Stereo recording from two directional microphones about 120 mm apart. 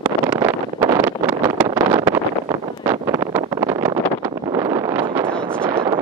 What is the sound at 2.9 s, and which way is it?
Wind noise, 25° right (ahead or behind).